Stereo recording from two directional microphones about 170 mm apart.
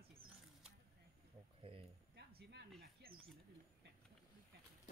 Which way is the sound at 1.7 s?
30° right (ahead or behind).